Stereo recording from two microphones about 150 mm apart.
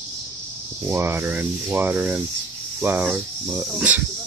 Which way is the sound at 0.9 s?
15° right (ahead or behind).